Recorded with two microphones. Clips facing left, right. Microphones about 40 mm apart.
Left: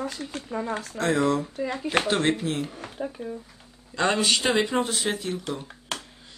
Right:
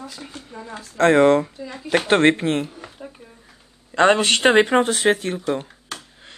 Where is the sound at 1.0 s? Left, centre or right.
Right.